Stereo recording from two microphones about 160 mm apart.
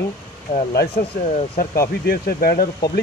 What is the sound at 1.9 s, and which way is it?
Speech, 75° left (ahead or behind).